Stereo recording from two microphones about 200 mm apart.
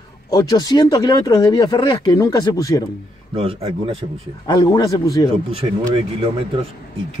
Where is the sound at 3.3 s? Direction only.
25° right (ahead or behind).